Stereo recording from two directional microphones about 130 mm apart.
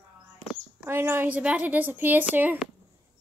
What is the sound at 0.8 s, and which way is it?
A woman's voice, 15° right (ahead or behind).